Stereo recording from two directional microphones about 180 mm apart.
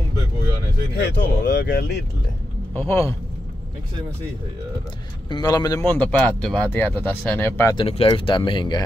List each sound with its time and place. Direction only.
1.0 s speech: 70° left (ahead or behind)
2.7 s speech: 15° left (ahead or behind)
5.3 s speech: 20° left (ahead or behind)
7.7 s speech: 30° left (ahead or behind)